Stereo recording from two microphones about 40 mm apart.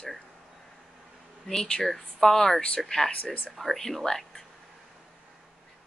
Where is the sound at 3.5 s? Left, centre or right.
Centre.